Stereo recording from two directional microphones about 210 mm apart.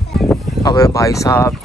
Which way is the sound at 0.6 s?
15° left (ahead or behind).